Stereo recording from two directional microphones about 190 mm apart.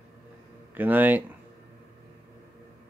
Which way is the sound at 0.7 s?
10° right (ahead or behind).